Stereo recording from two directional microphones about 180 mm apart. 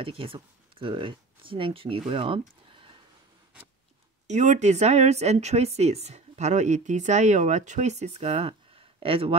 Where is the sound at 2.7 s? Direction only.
30° right (ahead or behind).